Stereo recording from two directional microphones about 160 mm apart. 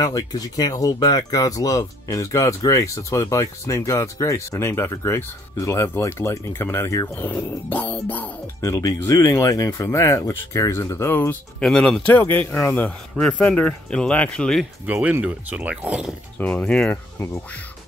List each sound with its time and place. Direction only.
0.0 s speech: 25° left (ahead or behind)
11.6 s speech: 5° left (ahead or behind)
14.9 s speech: 10° right (ahead or behind)
16.3 s speech: 10° left (ahead or behind)